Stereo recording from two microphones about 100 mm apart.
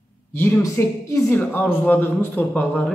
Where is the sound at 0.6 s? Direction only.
30° left (ahead or behind).